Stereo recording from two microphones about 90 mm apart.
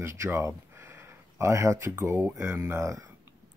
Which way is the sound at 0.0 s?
30° right (ahead or behind).